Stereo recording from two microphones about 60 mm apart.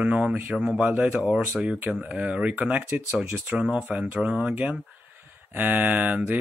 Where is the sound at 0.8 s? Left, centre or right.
Right.